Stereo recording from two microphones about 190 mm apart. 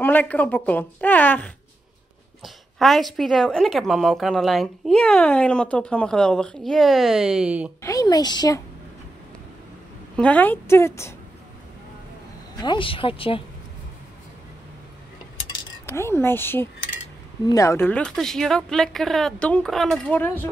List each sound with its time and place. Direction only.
0.0 s a woman's voice: 10° left (ahead or behind)
7.8 s a woman's voice: 20° left (ahead or behind)
10.1 s a woman's voice: 5° left (ahead or behind)
12.6 s a woman's voice: 25° left (ahead or behind)
15.9 s a woman's voice: 10° left (ahead or behind)